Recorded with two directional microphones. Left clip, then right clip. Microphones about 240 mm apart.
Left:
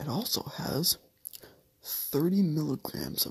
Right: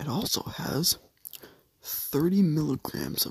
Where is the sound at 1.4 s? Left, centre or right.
Right.